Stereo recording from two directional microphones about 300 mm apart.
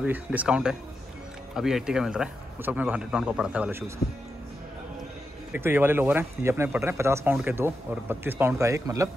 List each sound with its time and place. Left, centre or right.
0.0 s speech: centre
5.5 s speech: centre